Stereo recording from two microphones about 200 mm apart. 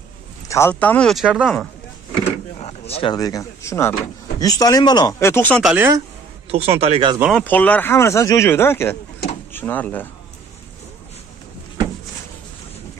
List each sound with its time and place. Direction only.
0.5 s speech: 10° left (ahead or behind)
2.9 s speech: 25° left (ahead or behind)
5.6 s speech: 5° right (ahead or behind)
6.5 s speech: 30° right (ahead or behind)
7.2 s speech: 5° right (ahead or behind)
7.4 s speech: 10° left (ahead or behind)